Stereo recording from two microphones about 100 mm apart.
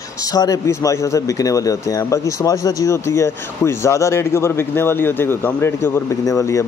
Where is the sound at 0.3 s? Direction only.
35° left (ahead or behind).